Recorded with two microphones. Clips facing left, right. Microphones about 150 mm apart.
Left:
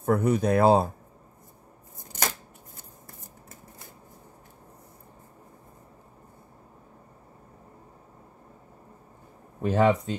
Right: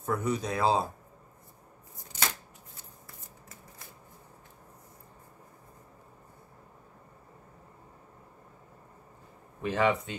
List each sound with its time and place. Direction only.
0.0 s speech: 55° left (ahead or behind)
2.1 s shuffling cards: 50° left (ahead or behind)
9.6 s speech: 40° left (ahead or behind)